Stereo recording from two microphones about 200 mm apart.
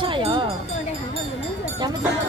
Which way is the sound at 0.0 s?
25° right (ahead or behind).